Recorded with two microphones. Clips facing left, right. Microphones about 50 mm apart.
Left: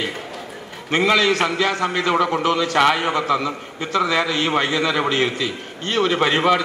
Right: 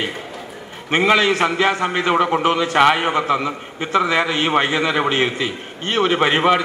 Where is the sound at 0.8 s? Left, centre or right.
Right.